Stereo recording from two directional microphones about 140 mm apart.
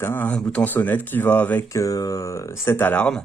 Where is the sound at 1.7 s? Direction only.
25° left (ahead or behind).